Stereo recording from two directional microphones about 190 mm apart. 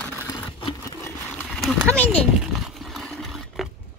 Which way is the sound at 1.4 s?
5° left (ahead or behind).